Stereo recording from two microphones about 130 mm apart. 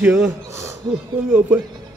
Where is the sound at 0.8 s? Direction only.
35° right (ahead or behind).